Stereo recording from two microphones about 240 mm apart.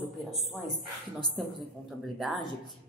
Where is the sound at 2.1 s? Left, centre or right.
Centre.